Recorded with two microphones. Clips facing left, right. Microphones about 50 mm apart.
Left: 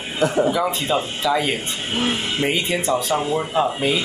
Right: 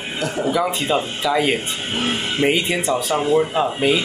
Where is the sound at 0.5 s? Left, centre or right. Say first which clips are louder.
Right 1 dB; centre.